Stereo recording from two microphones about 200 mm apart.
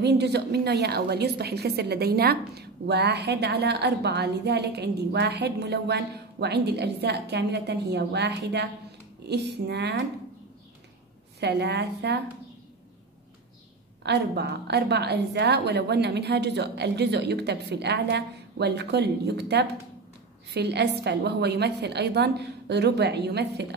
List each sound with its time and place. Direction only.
0.0 s a woman's voice: 55° right (ahead or behind)
11.3 s a woman's voice: 55° right (ahead or behind)
14.0 s a woman's voice: 55° right (ahead or behind)